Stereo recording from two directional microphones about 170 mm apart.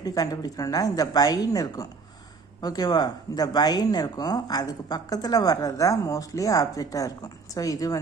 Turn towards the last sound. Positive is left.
turn(degrees=20)  # may be behind; listen again after turning